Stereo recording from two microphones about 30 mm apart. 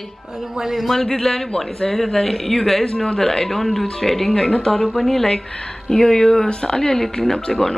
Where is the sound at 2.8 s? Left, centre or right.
Left.